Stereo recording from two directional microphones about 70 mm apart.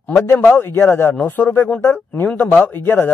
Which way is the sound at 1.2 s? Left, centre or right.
Left.